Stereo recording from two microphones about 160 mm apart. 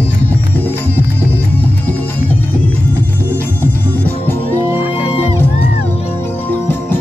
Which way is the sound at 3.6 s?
10° left (ahead or behind).